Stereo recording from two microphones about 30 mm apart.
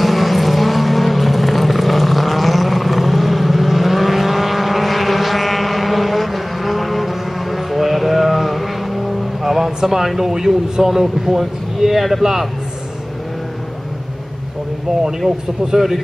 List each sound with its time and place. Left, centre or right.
0.0 s vehicle: centre
15.0 s speech: centre